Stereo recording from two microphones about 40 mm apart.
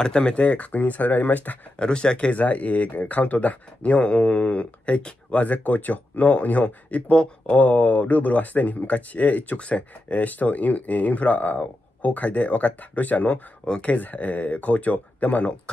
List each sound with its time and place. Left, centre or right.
0.0 s speech: left
0.4 s speech: left
1.8 s speech: left
2.3 s speech: left